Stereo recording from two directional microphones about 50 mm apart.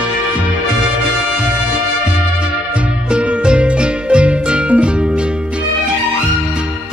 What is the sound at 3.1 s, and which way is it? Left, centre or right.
Music, right.